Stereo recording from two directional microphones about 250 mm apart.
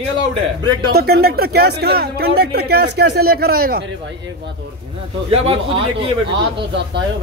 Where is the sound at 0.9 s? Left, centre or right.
Right.